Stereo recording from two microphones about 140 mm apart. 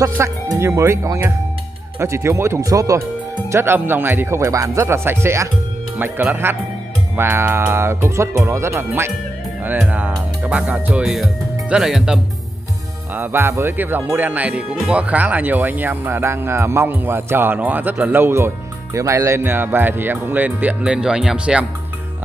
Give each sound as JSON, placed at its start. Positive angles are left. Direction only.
{"t": 0.0, "sound": "speech", "side_deg": -20}
{"t": 13.1, "sound": "speech", "side_deg": -15}